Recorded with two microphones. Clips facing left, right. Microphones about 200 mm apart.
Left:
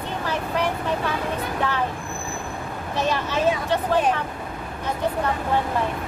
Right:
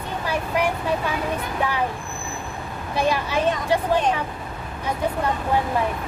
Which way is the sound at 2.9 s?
10° right (ahead or behind).